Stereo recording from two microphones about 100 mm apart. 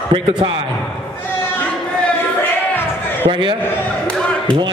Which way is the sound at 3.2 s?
55° right (ahead or behind).